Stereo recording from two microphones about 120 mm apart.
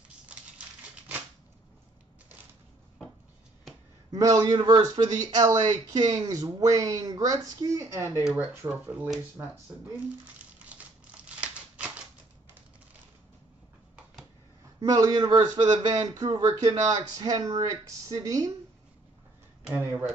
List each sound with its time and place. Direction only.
0.3 s typewriter: 10° right (ahead or behind)
4.1 s speech: 30° right (ahead or behind)
8.3 s speech: 15° right (ahead or behind)
10.7 s crumpling: 10° right (ahead or behind)
14.8 s speech: 30° right (ahead or behind)
19.7 s speech: 15° right (ahead or behind)